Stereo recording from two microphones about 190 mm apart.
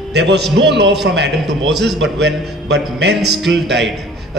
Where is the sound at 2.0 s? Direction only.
65° right (ahead or behind).